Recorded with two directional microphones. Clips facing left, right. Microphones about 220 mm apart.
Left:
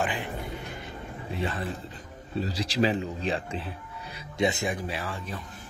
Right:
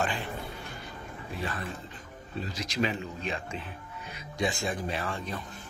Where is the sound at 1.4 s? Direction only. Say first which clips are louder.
Left 5 dB; 25° left (ahead or behind).